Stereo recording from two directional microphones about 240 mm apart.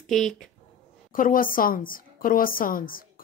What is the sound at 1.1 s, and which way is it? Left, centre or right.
A woman's voice, left.